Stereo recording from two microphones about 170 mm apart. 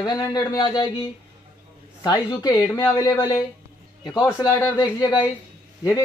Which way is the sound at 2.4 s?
20° left (ahead or behind).